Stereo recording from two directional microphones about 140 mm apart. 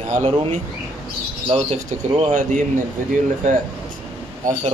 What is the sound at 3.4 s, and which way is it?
Speech, 60° right (ahead or behind).